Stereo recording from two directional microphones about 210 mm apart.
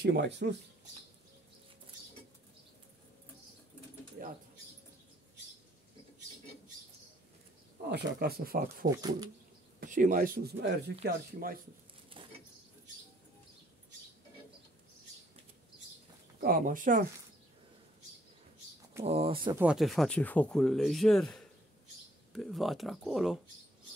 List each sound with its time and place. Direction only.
0.0 s speech: 55° right (ahead or behind)
7.9 s speech: 50° right (ahead or behind)
8.9 s speech: 20° right (ahead or behind)
9.8 s speech: 40° right (ahead or behind)
12.2 s a sound: 25° right (ahead or behind)
16.3 s speech: 45° right (ahead or behind)
19.0 s speech: 30° right (ahead or behind)
19.5 s speech: 5° right (ahead or behind)